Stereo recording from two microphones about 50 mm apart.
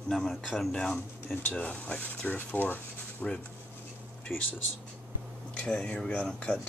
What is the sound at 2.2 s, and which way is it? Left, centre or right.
Speech, left.